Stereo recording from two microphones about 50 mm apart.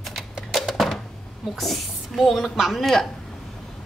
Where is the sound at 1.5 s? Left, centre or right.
Centre.